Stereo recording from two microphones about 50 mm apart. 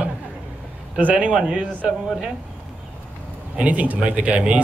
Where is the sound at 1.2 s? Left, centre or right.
Right.